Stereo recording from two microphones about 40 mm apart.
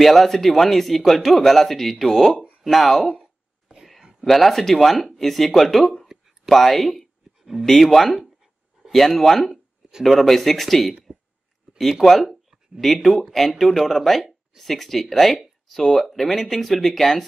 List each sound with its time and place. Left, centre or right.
0.0 s speech: centre
4.2 s speech: centre
6.5 s a sound: centre
7.6 s speech: centre